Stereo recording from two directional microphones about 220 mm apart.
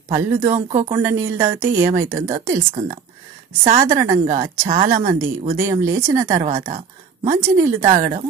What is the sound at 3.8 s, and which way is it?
Speech, 15° right (ahead or behind).